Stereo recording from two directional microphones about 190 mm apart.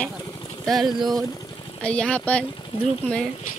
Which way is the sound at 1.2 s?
20° left (ahead or behind).